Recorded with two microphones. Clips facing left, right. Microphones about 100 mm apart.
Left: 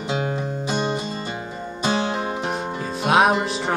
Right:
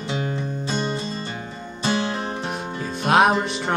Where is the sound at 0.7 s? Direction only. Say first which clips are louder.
Left 2 dB; 20° left (ahead or behind).